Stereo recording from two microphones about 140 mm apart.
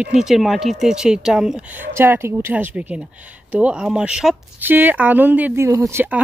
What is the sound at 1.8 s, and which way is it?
Speech, 15° right (ahead or behind).